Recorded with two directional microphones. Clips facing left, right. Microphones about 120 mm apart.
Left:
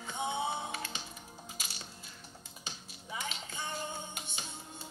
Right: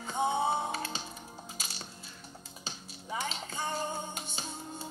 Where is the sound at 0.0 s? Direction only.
40° right (ahead or behind).